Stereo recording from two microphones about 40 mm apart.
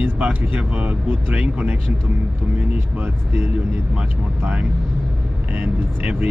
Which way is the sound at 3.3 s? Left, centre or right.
Right.